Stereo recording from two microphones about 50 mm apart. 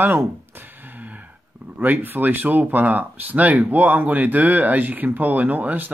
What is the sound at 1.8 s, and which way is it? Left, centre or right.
Speech, right.